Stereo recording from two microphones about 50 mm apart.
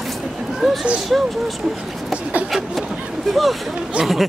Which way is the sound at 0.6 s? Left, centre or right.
Centre.